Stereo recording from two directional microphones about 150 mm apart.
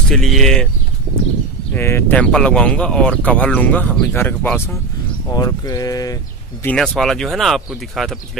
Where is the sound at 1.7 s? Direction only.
15° left (ahead or behind).